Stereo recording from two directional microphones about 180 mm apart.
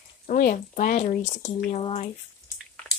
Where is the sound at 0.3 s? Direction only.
50° left (ahead or behind).